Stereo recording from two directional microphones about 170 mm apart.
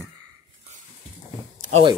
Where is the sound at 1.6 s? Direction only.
40° right (ahead or behind).